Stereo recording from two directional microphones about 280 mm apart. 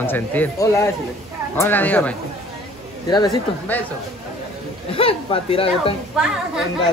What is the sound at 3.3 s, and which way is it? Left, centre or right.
Speech, centre.